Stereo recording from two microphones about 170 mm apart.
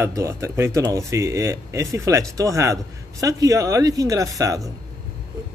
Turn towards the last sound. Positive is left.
turn(degrees=-20)  # may be behind; listen again after turning